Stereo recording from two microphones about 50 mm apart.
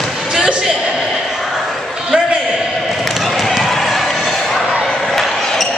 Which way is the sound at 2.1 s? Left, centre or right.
Centre.